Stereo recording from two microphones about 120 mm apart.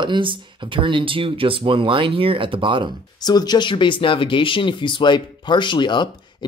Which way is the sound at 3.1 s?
35° left (ahead or behind).